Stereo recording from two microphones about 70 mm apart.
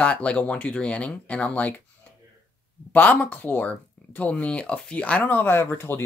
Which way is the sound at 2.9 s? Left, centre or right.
Left.